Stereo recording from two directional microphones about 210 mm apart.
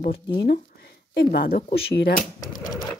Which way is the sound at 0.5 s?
50° left (ahead or behind).